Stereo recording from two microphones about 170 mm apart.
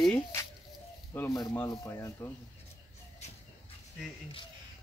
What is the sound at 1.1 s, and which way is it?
Speech, 15° left (ahead or behind).